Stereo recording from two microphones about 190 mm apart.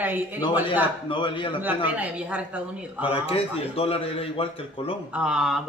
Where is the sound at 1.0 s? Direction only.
25° left (ahead or behind).